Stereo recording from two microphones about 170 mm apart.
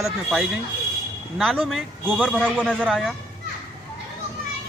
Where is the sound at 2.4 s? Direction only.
10° right (ahead or behind).